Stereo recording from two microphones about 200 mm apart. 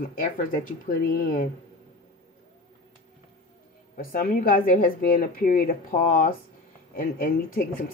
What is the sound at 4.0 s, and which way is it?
Speech, 45° left (ahead or behind).